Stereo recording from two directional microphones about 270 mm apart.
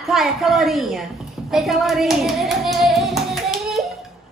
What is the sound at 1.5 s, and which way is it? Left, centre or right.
Singing, centre.